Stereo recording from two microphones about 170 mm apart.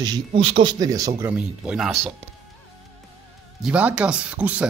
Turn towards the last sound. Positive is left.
turn(degrees=-5)  # may be behind; listen again after turning